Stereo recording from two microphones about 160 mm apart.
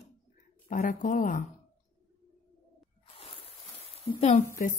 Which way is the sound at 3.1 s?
35° left (ahead or behind).